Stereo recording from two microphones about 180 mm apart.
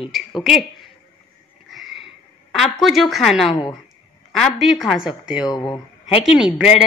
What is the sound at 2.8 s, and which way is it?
Speech, centre (ahead or behind).